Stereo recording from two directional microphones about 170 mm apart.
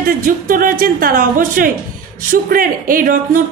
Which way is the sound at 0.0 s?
55° right (ahead or behind).